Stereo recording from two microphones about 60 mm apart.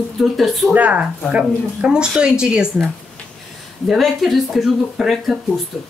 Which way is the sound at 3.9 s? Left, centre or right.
Centre.